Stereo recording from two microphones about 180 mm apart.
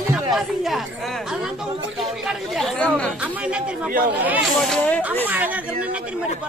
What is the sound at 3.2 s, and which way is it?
Chatter, 5° right (ahead or behind).